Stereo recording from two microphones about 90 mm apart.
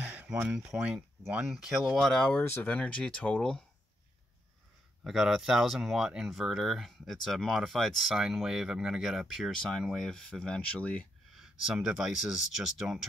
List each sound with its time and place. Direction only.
0.0 s speech: 15° right (ahead or behind); by 2.4 s 5° left (ahead or behind)
2.4 s speech: 20° left (ahead or behind)
5.0 s speech: 5° right (ahead or behind); by 11.1 s 15° left (ahead or behind)
11.3 s speech: 5° right (ahead or behind)